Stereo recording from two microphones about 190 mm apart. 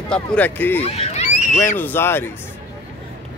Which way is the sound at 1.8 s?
10° left (ahead or behind).